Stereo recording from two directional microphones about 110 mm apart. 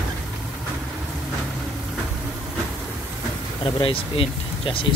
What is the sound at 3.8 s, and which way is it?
Speech, 55° left (ahead or behind).